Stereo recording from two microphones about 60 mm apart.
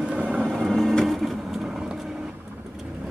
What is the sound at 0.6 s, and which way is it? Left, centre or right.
Vehicle, centre.